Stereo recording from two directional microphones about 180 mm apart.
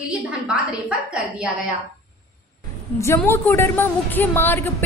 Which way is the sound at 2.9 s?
15° left (ahead or behind).